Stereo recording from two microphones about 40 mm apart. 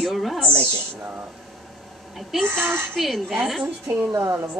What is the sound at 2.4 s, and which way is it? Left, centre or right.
Speech, right.